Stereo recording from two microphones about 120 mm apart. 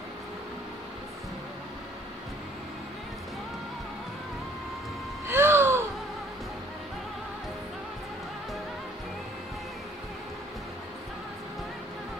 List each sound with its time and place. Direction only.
5.3 s gasp: 20° right (ahead or behind)